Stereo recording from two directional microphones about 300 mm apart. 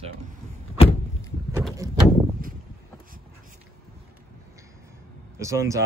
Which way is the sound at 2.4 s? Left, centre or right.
Right.